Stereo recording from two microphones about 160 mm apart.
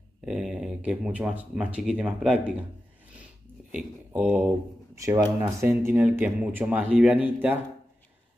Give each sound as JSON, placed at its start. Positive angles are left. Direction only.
{"t": 0.2, "sound": "speech", "side_deg": -5}
{"t": 3.7, "sound": "speech", "side_deg": -10}